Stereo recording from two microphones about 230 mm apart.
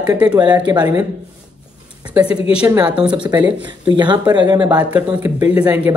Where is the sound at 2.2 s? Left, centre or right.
Left.